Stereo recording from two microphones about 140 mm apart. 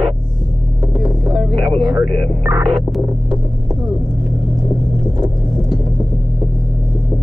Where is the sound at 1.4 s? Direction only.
Centre (ahead or behind).